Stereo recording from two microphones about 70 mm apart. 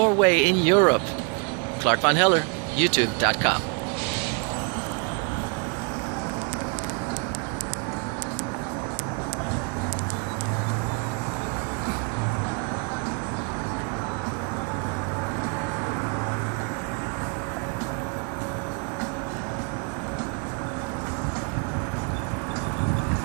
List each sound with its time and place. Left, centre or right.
0.0 s speech: centre